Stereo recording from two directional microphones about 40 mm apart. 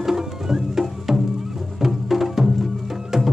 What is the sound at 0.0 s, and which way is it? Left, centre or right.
Music, centre.